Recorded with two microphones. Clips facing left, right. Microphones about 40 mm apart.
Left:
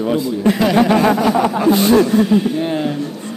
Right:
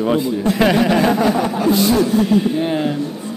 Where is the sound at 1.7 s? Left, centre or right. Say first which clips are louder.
Left 3 dB; left.